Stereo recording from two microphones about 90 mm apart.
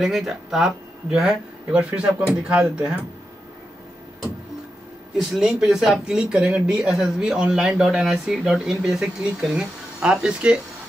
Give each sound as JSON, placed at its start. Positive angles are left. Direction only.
{"t": 0.0, "sound": "speech", "side_deg": -5}
{"t": 5.1, "sound": "speech", "side_deg": -5}